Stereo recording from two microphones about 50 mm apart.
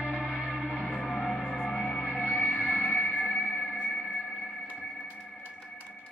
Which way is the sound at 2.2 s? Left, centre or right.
Left.